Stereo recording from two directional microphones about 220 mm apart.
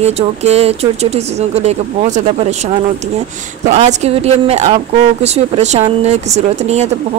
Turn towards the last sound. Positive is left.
turn(degrees=-30)  # may be behind; listen again after turning